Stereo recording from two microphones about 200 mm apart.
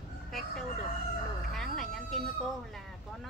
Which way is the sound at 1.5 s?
Centre (ahead or behind).